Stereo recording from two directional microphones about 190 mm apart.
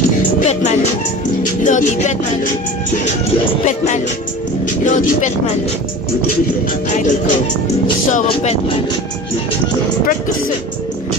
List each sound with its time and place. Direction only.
0.4 s speech: 40° left (ahead or behind)
1.4 s music: 40° left (ahead or behind)
3.6 s speech: 40° left (ahead or behind)
6.9 s speech: 40° left (ahead or behind)